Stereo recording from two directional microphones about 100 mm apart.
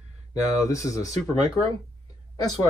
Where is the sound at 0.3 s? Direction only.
35° left (ahead or behind).